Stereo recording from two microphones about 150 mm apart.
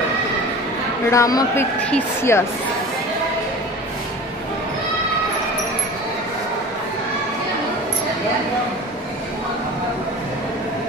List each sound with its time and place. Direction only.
1.1 s a man's voice: 20° left (ahead or behind)